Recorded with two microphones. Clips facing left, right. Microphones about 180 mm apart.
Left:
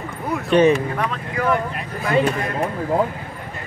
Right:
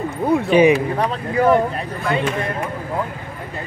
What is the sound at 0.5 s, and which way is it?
Speech, 10° right (ahead or behind).